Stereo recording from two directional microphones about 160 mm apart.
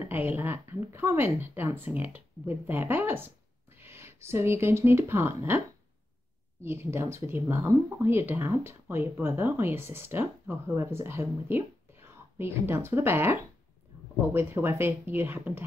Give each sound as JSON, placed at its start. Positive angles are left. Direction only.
{"t": 0.1, "sound": "speech", "side_deg": -15}
{"t": 3.7, "sound": "a sound", "side_deg": -15}
{"t": 4.2, "sound": "speech", "side_deg": -15}
{"t": 6.6, "sound": "speech", "side_deg": -15}